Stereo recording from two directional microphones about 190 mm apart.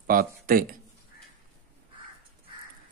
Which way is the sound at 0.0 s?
50° right (ahead or behind).